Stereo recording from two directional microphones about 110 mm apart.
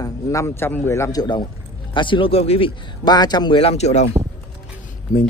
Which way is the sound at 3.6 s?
70° left (ahead or behind).